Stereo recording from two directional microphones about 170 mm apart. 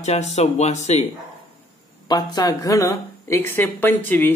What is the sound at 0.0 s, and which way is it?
Speech, 40° left (ahead or behind).